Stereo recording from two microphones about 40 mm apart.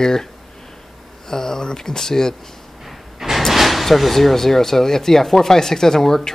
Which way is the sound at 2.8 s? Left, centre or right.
Centre.